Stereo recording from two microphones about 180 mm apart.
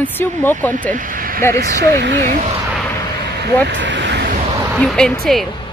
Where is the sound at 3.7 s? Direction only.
90° right.